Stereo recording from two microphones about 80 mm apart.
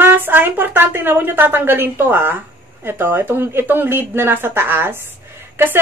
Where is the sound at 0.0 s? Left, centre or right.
Right.